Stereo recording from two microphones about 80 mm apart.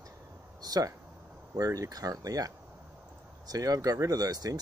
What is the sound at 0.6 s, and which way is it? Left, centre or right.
Speech, right.